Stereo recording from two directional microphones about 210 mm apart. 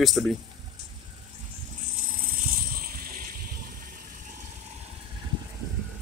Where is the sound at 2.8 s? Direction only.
45° right (ahead or behind).